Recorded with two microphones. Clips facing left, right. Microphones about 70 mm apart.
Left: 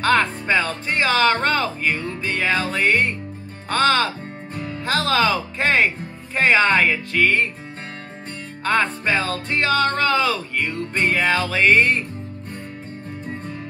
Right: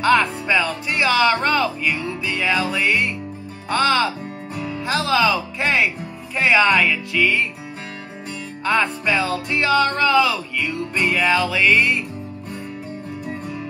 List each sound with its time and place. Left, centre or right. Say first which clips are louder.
0.0 s speech: right 2 dB; left
8.7 s speech: even; left